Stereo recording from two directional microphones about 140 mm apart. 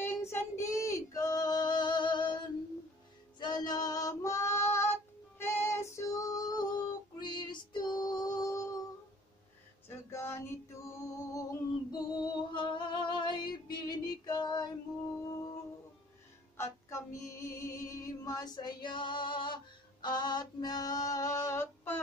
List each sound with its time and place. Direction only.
0.0 s female singing: 15° left (ahead or behind)
9.8 s female singing: 20° left (ahead or behind)
11.9 s music: 30° left (ahead or behind)
15.1 s a sound: 20° left (ahead or behind)
16.5 s music: 20° left (ahead or behind)